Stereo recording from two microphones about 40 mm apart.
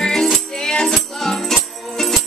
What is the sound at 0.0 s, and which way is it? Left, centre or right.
Music, centre.